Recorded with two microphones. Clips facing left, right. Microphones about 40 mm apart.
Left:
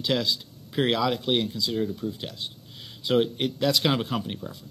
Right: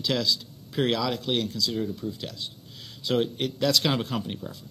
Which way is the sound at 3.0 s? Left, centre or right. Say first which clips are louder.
Left 2 dB; centre.